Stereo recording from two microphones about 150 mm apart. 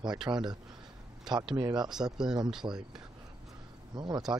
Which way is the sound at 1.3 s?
30° right (ahead or behind).